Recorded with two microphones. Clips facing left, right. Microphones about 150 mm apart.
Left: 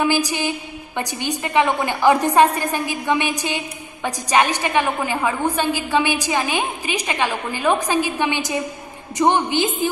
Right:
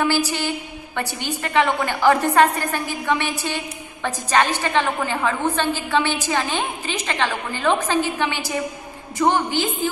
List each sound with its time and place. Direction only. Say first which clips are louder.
0.0 s a woman's voice: left 1 dB; 15° left (ahead or behind)